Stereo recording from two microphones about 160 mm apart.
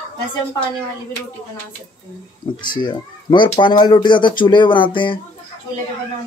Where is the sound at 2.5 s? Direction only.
30° left (ahead or behind).